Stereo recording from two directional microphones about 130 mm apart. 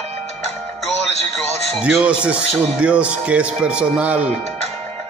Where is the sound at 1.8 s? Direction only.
5° right (ahead or behind).